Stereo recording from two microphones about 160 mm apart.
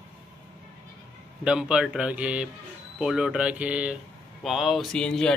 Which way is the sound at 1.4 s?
5° right (ahead or behind).